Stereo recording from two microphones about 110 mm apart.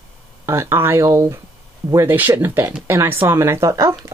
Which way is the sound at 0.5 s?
25° right (ahead or behind).